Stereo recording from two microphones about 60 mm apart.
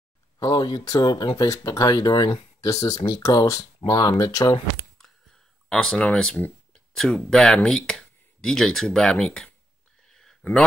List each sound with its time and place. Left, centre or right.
0.4 s speech: left
5.7 s speech: centre
10.0 s a sound: centre